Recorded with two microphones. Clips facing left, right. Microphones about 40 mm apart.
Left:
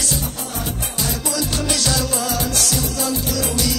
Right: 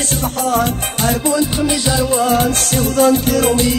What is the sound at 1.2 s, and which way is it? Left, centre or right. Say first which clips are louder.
Music: right 7 dB; right.